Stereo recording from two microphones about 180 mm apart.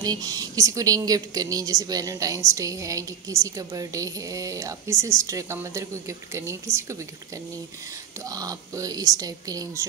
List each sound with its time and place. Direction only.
0.0 s a woman's voice: 20° right (ahead or behind)
8.2 s a woman's voice: 20° right (ahead or behind)